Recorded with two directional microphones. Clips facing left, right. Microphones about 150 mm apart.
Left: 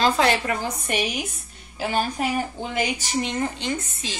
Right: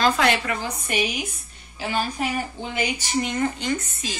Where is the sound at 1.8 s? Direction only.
45° left (ahead or behind).